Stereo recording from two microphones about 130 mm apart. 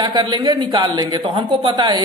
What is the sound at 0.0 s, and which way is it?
Speech, 35° right (ahead or behind).